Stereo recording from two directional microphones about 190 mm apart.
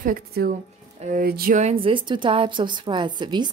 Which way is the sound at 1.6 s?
30° right (ahead or behind).